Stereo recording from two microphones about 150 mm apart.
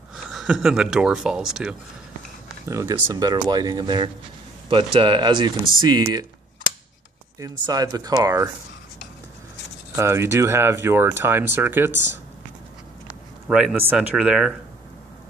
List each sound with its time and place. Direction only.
0.1 s speech: centre (ahead or behind)
2.6 s speech: 20° right (ahead or behind)
7.3 s speech: 25° right (ahead or behind)
9.9 s speech: 20° right (ahead or behind)
13.5 s speech: 5° right (ahead or behind)